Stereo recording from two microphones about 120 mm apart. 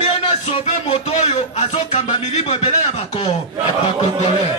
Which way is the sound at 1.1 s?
75° left (ahead or behind).